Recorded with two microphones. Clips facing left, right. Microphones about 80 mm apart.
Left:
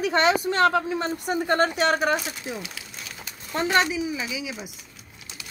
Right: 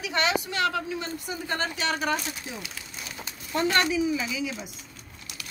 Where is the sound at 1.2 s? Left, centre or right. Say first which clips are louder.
Left 12 dB; left.